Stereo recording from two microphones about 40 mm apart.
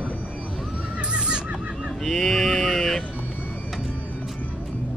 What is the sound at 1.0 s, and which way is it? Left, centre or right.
Neigh, right.